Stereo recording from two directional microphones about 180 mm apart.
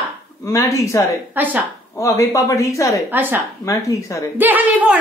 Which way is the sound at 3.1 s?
10° right (ahead or behind).